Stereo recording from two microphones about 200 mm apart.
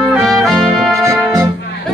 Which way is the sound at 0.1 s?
Centre (ahead or behind).